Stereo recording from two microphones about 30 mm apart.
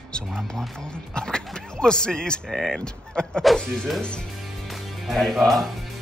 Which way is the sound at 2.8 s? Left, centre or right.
Left.